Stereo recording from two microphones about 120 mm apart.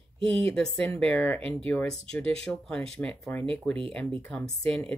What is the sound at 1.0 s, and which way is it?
Speech, 10° left (ahead or behind).